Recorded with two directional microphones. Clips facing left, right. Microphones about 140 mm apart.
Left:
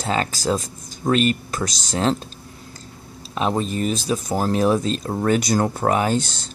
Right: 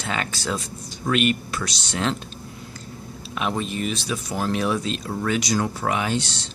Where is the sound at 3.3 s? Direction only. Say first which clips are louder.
Left 4 dB; 35° left (ahead or behind).